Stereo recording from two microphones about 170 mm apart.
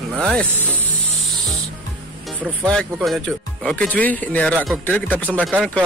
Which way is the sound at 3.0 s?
Centre (ahead or behind).